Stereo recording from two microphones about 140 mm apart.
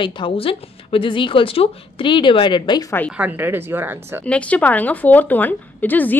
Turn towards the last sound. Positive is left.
turn(degrees=10)  # may be behind; listen again after turning